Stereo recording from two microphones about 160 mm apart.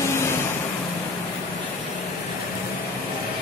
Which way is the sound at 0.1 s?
15° left (ahead or behind).